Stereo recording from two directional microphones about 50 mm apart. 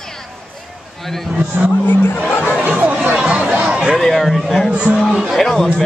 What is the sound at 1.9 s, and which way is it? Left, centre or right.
Speech, left.